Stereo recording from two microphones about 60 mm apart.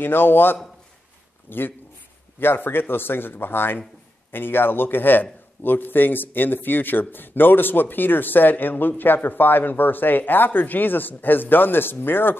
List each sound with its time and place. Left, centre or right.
0.0 s a man's voice: left